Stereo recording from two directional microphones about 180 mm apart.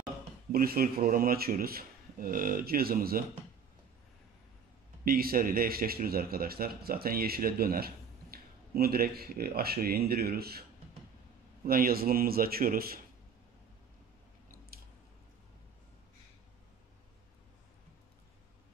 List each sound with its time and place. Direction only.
0.5 s speech: 55° right (ahead or behind)
5.0 s speech: 55° right (ahead or behind)
11.6 s speech: 55° right (ahead or behind)